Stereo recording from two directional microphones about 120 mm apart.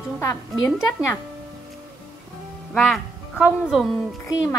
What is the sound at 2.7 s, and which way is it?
Music, 5° left (ahead or behind).